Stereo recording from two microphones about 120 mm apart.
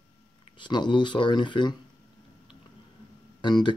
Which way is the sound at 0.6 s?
40° left (ahead or behind).